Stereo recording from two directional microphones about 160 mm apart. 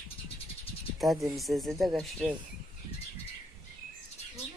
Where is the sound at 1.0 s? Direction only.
Centre (ahead or behind).